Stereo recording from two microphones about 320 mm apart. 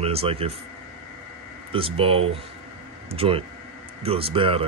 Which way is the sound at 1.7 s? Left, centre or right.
Centre.